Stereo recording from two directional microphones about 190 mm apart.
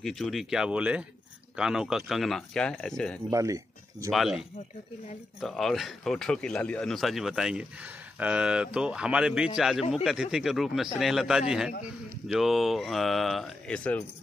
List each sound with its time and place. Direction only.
0.0 s speech: centre (ahead or behind)
3.3 s speech: 15° right (ahead or behind)
4.1 s speech: centre (ahead or behind)